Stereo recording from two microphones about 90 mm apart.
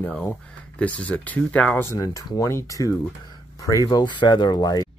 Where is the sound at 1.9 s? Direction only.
35° left (ahead or behind); by 4.8 s 55° left (ahead or behind).